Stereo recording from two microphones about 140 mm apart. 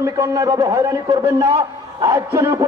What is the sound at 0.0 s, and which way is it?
A man's voice, 25° right (ahead or behind).